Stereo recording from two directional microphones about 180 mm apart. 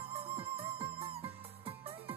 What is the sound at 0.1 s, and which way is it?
Music, 30° right (ahead or behind).